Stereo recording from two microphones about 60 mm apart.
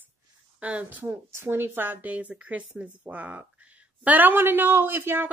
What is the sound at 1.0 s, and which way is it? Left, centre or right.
A woman's voice, right.